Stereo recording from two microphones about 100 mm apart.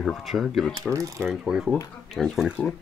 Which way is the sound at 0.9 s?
30° right (ahead or behind).